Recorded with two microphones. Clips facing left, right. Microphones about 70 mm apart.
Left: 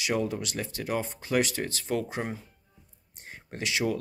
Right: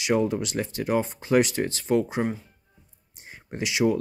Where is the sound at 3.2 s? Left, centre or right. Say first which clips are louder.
Right 5 dB; centre.